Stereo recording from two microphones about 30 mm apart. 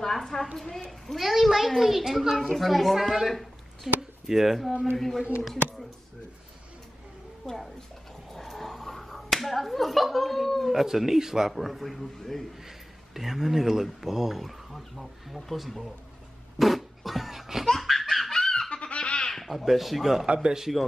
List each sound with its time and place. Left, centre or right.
0.0 s a woman's voice: centre
0.8 s a woman's voice: centre
4.9 s a woman's voice: centre
7.4 s a woman's voice: centre
8.3 s slap: centre
10.7 s speech: centre
11.5 s a woman's voice: centre
12.6 s a woman's voice: centre
16.5 s a sound: centre
17.9 s laughter: centre
18.3 s goat: centre
18.7 s goat: left
19.5 s a woman's voice: centre